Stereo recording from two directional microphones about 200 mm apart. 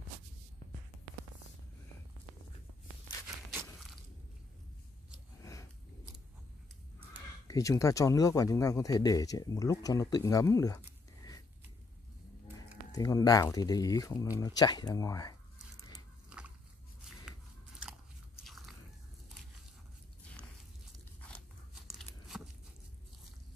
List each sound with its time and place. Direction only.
5.4 s scissors: 15° left (ahead or behind)
7.4 s speech: 15° left (ahead or behind)
12.5 s speech: 15° left (ahead or behind)
16.3 s a sound: 5° right (ahead or behind)
18.4 s biting: centre (ahead or behind)
21.2 s crunch: 5° left (ahead or behind)